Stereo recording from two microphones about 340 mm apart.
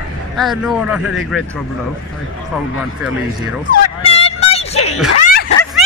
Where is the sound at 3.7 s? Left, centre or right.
Centre.